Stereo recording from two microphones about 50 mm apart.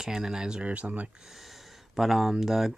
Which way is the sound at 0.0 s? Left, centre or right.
Centre.